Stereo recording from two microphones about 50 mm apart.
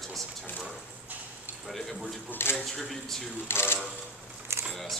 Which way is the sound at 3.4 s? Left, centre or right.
Left.